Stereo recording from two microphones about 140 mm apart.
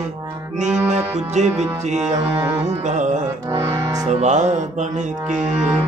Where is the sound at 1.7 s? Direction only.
55° right (ahead or behind).